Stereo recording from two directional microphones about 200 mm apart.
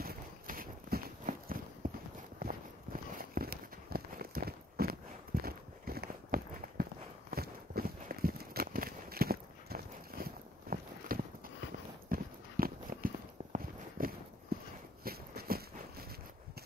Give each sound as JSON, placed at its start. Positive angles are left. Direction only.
{"t": 0.0, "sound": "horse", "side_deg": -45}
{"t": 1.8, "sound": "clip-clop", "side_deg": -45}
{"t": 14.5, "sound": "a sound", "side_deg": -50}